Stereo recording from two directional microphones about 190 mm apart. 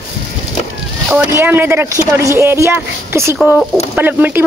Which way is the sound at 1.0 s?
10° right (ahead or behind).